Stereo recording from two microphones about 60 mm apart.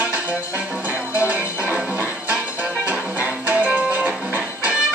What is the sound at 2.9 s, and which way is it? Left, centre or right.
Music, right.